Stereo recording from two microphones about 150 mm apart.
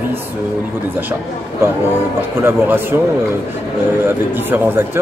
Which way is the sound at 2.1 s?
15° right (ahead or behind).